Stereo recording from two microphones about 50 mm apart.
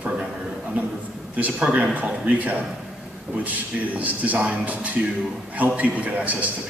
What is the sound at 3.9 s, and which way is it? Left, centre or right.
A man's voice, right.